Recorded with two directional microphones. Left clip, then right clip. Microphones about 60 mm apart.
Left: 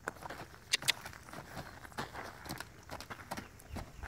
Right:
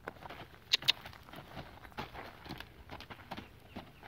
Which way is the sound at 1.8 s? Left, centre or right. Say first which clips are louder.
Left 2 dB; centre.